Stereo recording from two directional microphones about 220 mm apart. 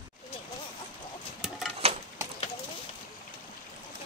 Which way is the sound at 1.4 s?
Centre (ahead or behind).